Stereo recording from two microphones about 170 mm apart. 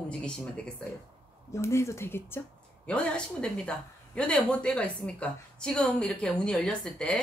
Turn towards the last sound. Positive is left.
turn(degrees=5)  # may be behind; listen again after turning